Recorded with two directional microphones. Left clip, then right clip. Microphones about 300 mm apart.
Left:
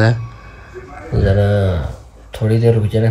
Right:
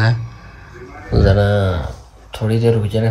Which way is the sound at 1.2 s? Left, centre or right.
Centre.